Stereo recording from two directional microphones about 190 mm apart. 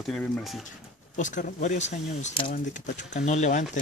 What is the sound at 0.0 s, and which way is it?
Speech, centre (ahead or behind).